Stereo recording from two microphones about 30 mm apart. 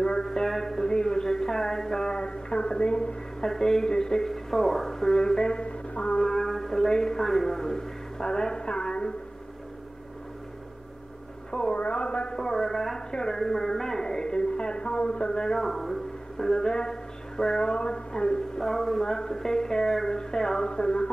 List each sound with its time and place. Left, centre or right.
0.0 s a sound: left
3.3 s a man's voice: centre
4.3 s speech: centre; by 5.6 s left
5.6 s music: left
6.2 s a man's voice: centre; by 9.1 s left
11.5 s speech: left
12.5 s a man's voice: centre
15.6 s a man's voice: centre
16.3 s speech: centre
18.6 s a man's voice: centre; by 21.1 s left